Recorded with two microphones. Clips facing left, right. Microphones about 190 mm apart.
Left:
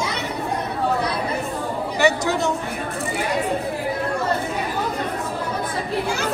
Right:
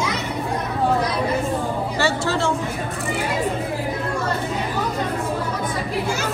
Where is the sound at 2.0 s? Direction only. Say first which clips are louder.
Left 3 dB; 15° left (ahead or behind).